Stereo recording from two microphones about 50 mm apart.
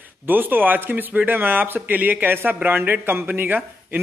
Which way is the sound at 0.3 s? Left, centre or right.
Right.